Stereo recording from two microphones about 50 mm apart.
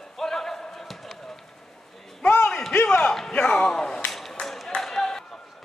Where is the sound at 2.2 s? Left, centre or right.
Left.